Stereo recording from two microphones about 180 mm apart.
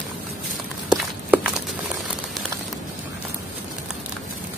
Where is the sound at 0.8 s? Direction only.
5° right (ahead or behind).